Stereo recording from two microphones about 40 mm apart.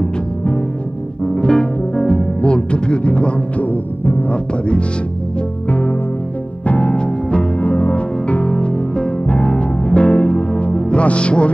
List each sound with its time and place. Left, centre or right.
1.2 s music: centre; by 3.8 s left
4.3 s speech: left
5.7 s music: left
6.9 s music: left
7.6 s music: left
9.2 s music: left
9.5 s music: left